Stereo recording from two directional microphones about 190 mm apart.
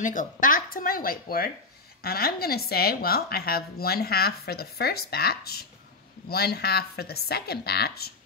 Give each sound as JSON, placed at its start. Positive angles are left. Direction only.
{"t": 0.0, "sound": "a woman's voice", "side_deg": 45}